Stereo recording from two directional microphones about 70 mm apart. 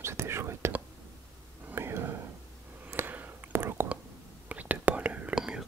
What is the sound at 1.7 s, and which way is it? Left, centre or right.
Whispering, right.